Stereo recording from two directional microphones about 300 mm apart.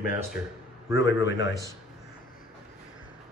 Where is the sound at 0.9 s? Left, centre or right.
Centre.